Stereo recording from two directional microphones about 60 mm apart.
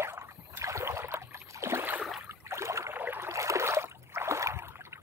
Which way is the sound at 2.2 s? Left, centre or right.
Right.